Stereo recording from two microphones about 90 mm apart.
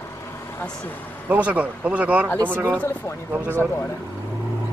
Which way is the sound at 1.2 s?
20° right (ahead or behind).